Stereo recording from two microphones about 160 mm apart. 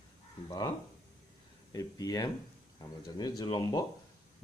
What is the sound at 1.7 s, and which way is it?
Speech, 25° left (ahead or behind).